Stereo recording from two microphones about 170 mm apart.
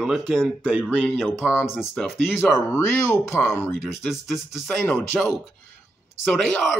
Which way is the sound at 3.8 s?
Centre (ahead or behind).